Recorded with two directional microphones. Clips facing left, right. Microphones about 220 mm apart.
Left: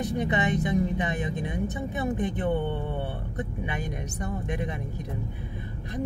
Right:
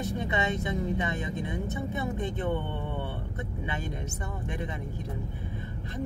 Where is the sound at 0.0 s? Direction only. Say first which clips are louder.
Left 4 dB; 20° left (ahead or behind).